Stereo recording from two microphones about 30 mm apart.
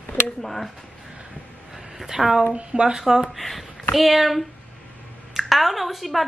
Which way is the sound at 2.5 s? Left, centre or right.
Right.